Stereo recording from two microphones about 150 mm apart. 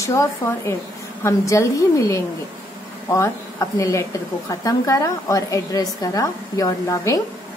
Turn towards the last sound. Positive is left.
turn(degrees=20)  # may be behind; listen again after turning